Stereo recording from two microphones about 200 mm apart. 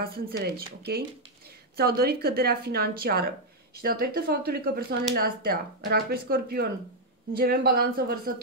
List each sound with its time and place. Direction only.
0.0 s speech: 50° right (ahead or behind)